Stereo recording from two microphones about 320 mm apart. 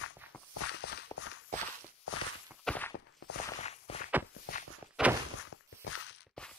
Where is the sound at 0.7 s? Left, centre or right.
Left.